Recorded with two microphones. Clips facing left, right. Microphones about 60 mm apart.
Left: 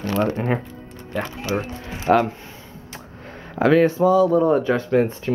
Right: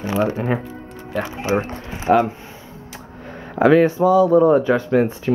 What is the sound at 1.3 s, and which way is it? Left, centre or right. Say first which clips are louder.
Speech: right 4 dB; right.